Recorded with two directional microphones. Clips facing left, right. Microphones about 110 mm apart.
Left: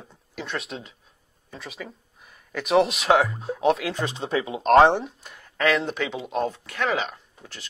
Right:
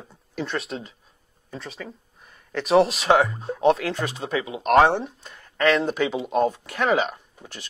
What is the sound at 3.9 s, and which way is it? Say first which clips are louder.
Speech: left 1 dB; 20° left (ahead or behind).